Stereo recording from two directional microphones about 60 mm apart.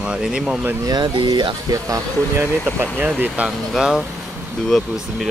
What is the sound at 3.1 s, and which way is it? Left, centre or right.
Speech, right.